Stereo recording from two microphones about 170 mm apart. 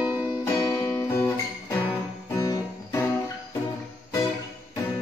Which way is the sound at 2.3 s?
20° left (ahead or behind).